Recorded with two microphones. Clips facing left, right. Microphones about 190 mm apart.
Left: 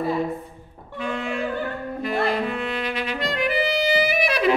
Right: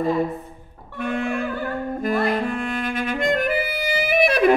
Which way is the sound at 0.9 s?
55° right (ahead or behind).